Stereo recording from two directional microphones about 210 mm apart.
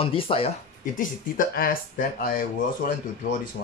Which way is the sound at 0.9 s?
40° left (ahead or behind).